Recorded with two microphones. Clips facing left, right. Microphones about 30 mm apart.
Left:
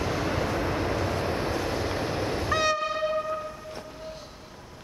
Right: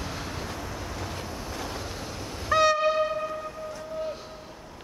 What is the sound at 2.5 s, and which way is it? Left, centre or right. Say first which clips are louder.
Train: right 5 dB; centre.